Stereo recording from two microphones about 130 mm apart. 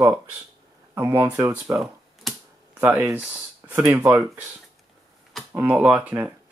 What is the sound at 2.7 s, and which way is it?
Speech, 15° right (ahead or behind).